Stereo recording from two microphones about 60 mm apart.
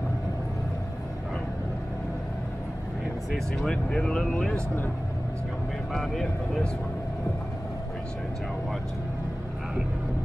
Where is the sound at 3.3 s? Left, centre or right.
Centre.